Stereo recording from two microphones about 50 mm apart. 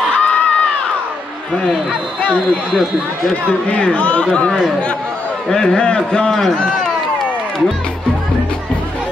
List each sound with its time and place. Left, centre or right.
0.2 s crowd: left
2.7 s speech: centre
3.6 s speech: left
4.5 s speech: centre